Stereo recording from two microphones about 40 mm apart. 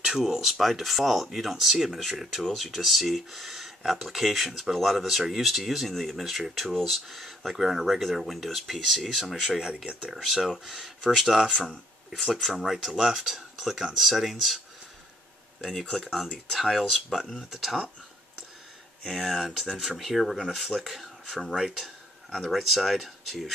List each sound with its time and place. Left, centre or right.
0.0 s speech: centre
9.4 s speech: centre
12.1 s speech: centre
15.6 s speech: centre
16.7 s speech: centre
19.0 s speech: centre
19.7 s speech: centre
20.0 s speech: centre